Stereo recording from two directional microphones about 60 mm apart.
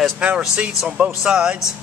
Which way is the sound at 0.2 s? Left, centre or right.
Centre.